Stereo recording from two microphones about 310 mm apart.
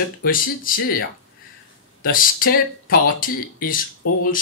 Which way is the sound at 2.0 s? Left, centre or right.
Left.